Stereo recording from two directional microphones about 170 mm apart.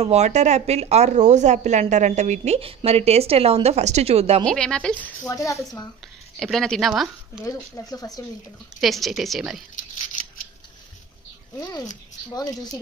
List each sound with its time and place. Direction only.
0.0 s speech: 40° right (ahead or behind)
4.5 s a woman's voice: 5° left (ahead or behind)
5.3 s speech: 20° left (ahead or behind)
6.4 s a woman's voice: 5° left (ahead or behind)
7.4 s speech: 20° left (ahead or behind)
8.8 s a woman's voice: centre (ahead or behind)